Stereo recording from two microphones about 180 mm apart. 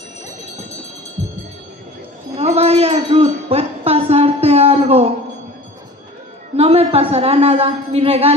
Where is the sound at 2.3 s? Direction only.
35° right (ahead or behind).